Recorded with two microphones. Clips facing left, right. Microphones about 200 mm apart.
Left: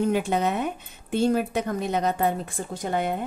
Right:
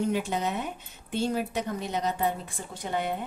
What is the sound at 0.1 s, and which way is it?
Speech, 60° left (ahead or behind).